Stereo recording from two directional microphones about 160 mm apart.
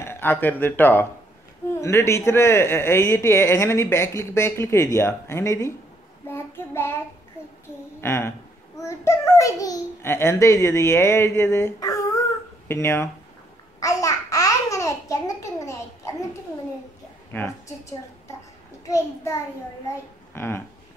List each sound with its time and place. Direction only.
0.0 s speech: 15° left (ahead or behind)
6.3 s child singing: 15° left (ahead or behind)
8.0 s a child's voice: 15° left (ahead or behind)
17.3 s a child's voice: 10° left (ahead or behind)
20.3 s speech: 15° left (ahead or behind)